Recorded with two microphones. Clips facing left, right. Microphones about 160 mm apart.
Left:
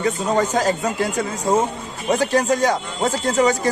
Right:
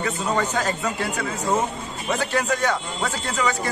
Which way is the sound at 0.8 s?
35° left (ahead or behind).